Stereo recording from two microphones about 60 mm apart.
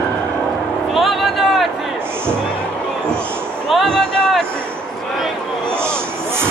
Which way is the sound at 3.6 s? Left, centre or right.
Centre.